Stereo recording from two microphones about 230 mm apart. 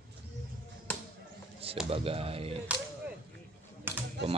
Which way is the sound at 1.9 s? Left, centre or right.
Right.